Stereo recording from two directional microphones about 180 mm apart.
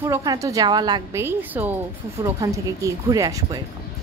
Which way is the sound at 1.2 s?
10° right (ahead or behind).